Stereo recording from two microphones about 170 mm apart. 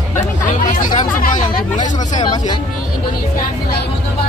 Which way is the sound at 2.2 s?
25° left (ahead or behind).